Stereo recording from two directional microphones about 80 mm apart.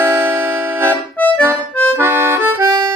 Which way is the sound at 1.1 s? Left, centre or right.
Left.